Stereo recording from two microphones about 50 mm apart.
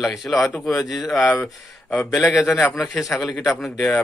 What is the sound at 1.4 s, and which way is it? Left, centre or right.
Speech, left.